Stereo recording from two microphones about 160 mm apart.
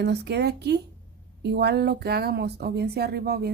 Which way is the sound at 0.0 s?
90° right.